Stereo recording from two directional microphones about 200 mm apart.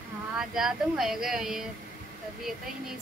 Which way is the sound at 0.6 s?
Centre (ahead or behind).